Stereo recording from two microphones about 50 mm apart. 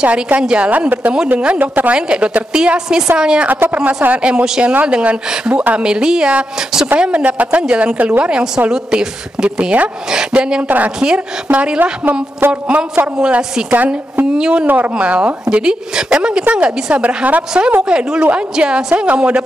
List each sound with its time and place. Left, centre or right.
0.0 s a woman's voice: right
0.7 s a woman's voice: right
2.0 s a woman's voice: centre
3.4 s speech: right
3.7 s a woman's voice: right
11.8 s a woman's voice: right
13.0 s a man's voice: centre
14.7 s a woman's voice: right
17.8 s a man's voice: centre